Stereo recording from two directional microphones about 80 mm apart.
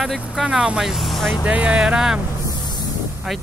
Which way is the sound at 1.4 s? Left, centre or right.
Centre.